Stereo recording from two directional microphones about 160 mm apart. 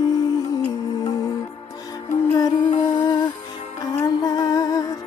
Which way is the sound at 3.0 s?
25° left (ahead or behind).